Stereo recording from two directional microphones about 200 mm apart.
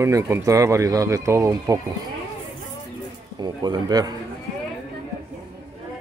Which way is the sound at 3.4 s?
20° right (ahead or behind).